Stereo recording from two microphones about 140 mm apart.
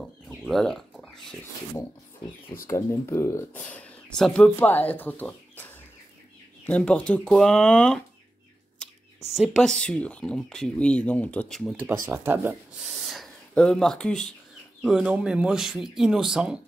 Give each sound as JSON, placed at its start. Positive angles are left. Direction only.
{"t": 0.4, "sound": "a sound", "side_deg": 5}
{"t": 2.5, "sound": "speech", "side_deg": 20}
{"t": 9.3, "sound": "speech", "side_deg": 0}
{"t": 12.1, "sound": "speech", "side_deg": -15}
{"t": 12.9, "sound": "a sound", "side_deg": 0}
{"t": 14.8, "sound": "speech", "side_deg": -5}